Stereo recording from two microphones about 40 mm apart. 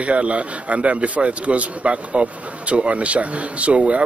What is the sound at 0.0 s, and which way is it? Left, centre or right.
A man's voice, right.